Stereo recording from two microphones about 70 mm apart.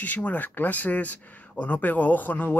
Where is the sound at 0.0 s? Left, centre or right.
Left.